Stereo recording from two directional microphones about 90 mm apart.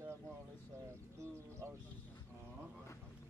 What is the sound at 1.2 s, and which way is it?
Speech, 30° right (ahead or behind).